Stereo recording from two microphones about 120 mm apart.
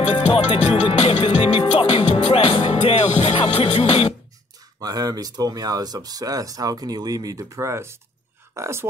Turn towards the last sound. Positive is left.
turn(degrees=-25)  # may be behind; listen again after turning